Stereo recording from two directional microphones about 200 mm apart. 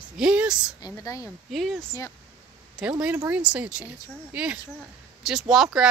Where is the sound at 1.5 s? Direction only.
Centre (ahead or behind).